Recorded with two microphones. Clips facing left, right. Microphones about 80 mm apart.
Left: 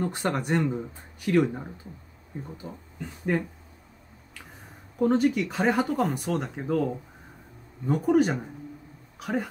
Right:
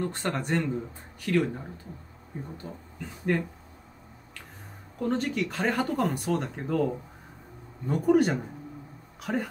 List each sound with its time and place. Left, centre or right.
0.0 s speech: centre
2.6 s speech: centre
4.9 s speech: centre